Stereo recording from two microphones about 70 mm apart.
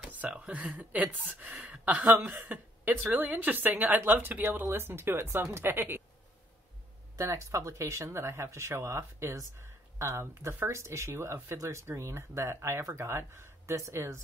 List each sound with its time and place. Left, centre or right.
0.1 s speech: right
7.2 s speech: right